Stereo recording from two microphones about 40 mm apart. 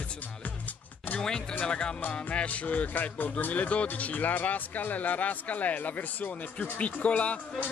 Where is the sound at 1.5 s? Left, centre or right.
Left.